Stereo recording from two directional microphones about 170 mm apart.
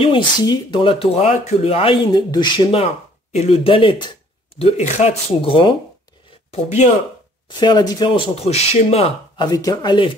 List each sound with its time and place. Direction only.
0.0 s speech: 30° left (ahead or behind)
4.6 s speech: 40° left (ahead or behind)
7.4 s speech: 25° left (ahead or behind)
9.5 s speech: 25° left (ahead or behind)